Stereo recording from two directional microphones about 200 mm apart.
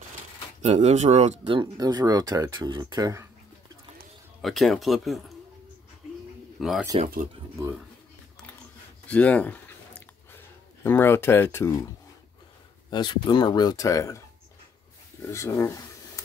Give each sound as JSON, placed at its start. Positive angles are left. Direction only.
{"t": 0.6, "sound": "speech", "side_deg": -35}
{"t": 1.6, "sound": "speech", "side_deg": -20}
{"t": 4.4, "sound": "speech", "side_deg": 0}
{"t": 6.6, "sound": "speech", "side_deg": 0}
{"t": 7.5, "sound": "speech", "side_deg": -15}
{"t": 9.0, "sound": "a sound", "side_deg": 5}
{"t": 10.8, "sound": "speech", "side_deg": 10}
{"t": 12.9, "sound": "speech", "side_deg": 20}
{"t": 15.3, "sound": "speech", "side_deg": 15}